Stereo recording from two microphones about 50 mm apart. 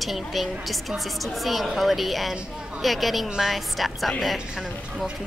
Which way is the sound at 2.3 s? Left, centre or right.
Centre.